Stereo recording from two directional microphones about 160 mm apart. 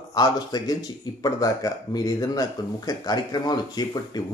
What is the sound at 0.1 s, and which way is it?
Speech, 25° left (ahead or behind).